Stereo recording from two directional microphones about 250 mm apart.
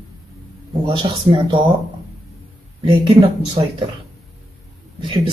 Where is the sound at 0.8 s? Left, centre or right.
Centre.